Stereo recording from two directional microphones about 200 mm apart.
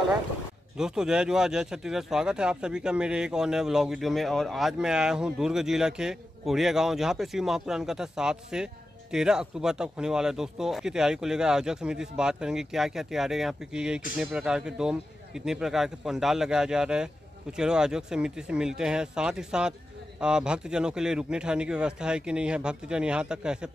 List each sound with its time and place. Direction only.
0.7 s speech: 5° right (ahead or behind)